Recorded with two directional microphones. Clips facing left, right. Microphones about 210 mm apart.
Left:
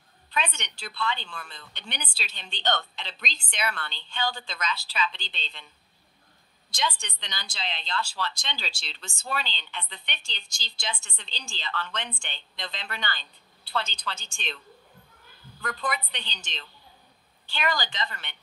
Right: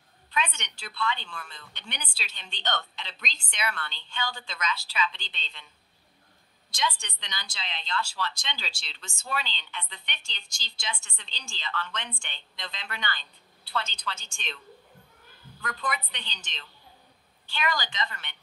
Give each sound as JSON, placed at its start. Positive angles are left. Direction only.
{"t": 0.3, "sound": "a woman's voice", "side_deg": 35}
{"t": 6.7, "sound": "a woman's voice", "side_deg": 35}
{"t": 15.6, "sound": "a woman's voice", "side_deg": 30}